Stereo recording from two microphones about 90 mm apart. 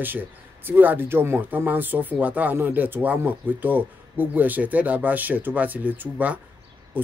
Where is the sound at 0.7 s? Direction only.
20° right (ahead or behind).